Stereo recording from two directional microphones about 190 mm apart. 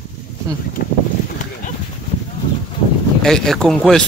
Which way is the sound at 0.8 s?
50° left (ahead or behind).